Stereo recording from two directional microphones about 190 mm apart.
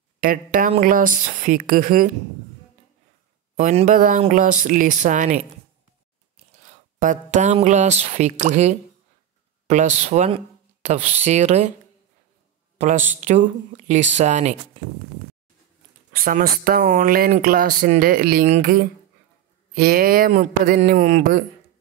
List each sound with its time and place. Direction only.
0.2 s speech: 45° right (ahead or behind)
3.5 s speech: 40° right (ahead or behind)
6.3 s a sound: 40° right (ahead or behind)
9.7 s speech: 35° right (ahead or behind)
12.7 s speech: 40° right (ahead or behind)
16.1 s speech: 45° right (ahead or behind)